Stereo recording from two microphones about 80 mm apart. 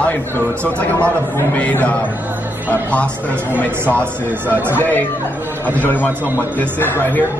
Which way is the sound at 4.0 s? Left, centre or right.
Right.